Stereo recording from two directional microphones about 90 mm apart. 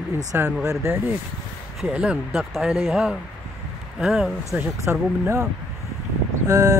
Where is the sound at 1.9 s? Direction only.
15° right (ahead or behind).